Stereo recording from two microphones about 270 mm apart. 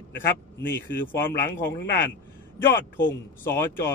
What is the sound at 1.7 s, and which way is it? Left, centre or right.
Speech, left.